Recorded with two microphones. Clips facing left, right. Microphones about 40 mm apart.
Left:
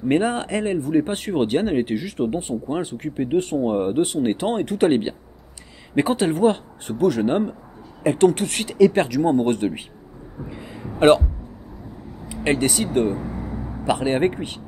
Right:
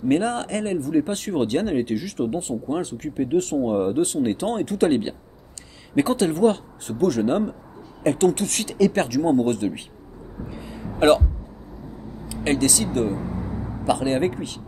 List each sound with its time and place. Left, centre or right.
0.1 s speech: left
10.5 s a sound: left
12.3 s speech: left